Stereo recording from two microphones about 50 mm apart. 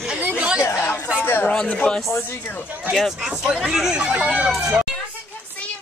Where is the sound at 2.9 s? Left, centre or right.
Centre.